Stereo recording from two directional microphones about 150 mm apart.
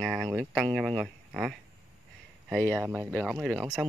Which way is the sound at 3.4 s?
5° right (ahead or behind).